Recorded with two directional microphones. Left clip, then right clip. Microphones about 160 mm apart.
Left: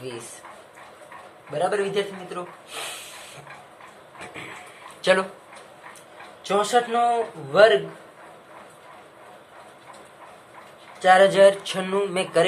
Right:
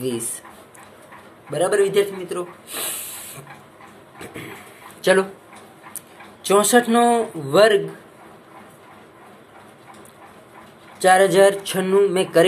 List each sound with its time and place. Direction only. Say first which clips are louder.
0.0 s speech: right 9 dB; 30° right (ahead or behind)
1.5 s speech: right 5 dB; 35° right (ahead or behind)
4.2 s a sound: right 2 dB; 10° right (ahead or behind)
5.0 s speech: right 3 dB; 20° right (ahead or behind)
6.4 s speech: right 5 dB; 40° right (ahead or behind)
11.0 s speech: right 1 dB; 30° right (ahead or behind)